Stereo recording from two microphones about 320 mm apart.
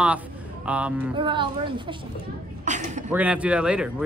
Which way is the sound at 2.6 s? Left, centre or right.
Right.